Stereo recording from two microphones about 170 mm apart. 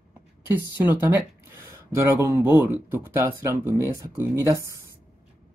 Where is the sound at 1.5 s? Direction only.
15° right (ahead or behind).